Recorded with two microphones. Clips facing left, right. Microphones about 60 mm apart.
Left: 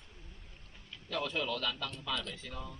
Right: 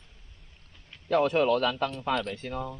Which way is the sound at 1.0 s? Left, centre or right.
Right.